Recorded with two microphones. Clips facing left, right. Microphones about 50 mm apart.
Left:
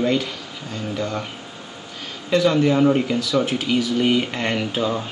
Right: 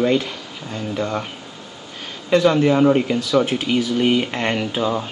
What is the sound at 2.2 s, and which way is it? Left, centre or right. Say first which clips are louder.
A man's voice: right 2 dB; right.